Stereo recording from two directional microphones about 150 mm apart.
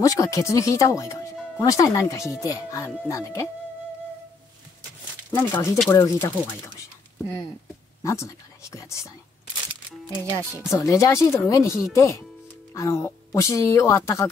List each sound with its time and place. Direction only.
0.0 s a woman's voice: 20° left (ahead or behind)
5.3 s speech: 15° left (ahead or behind)
8.0 s speech: 20° left (ahead or behind)
10.7 s a woman's voice: 20° left (ahead or behind)